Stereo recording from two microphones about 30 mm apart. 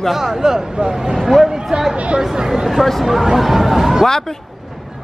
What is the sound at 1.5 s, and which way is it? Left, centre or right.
Chatter, centre.